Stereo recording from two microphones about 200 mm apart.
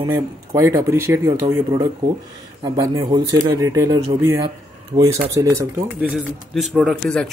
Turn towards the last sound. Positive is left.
turn(degrees=5)  # may be behind; listen again after turning